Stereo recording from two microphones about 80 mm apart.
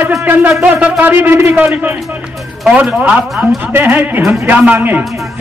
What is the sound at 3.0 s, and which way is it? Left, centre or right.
A man's voice, right.